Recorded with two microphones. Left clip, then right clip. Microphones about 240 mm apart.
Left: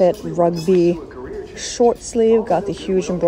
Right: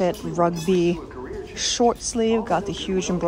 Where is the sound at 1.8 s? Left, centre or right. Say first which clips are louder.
Left 5 dB; right.